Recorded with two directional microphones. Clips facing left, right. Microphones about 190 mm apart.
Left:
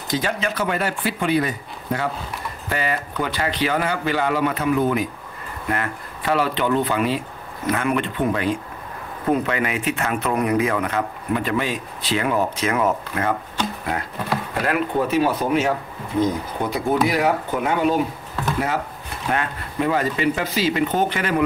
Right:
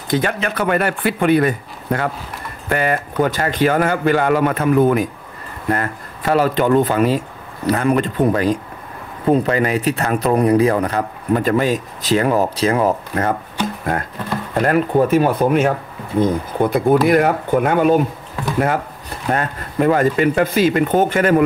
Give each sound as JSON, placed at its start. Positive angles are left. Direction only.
{"t": 0.1, "sound": "speech", "side_deg": -60}
{"t": 14.5, "sound": "speech", "side_deg": -45}
{"t": 19.0, "sound": "speech", "side_deg": -40}